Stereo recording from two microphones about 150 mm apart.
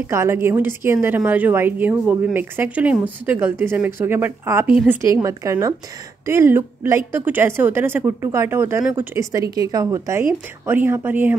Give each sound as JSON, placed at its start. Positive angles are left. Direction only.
{"t": 0.0, "sound": "a woman's voice", "side_deg": -15}